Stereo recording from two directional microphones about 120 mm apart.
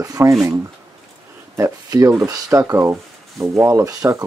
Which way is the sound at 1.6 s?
30° right (ahead or behind).